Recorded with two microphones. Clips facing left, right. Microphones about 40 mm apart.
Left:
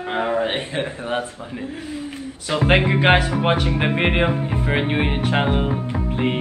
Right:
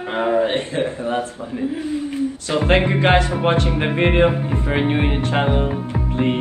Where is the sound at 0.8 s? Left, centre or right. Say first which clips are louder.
Right 3 dB; left.